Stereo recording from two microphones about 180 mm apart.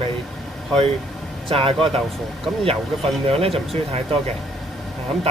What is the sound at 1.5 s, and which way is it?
Speech, 30° right (ahead or behind).